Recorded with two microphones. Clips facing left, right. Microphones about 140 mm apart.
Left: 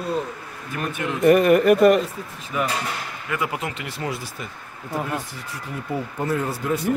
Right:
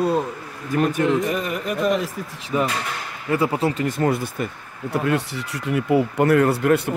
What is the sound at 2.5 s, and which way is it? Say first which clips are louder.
Speech: right 2 dB; 30° right (ahead or behind).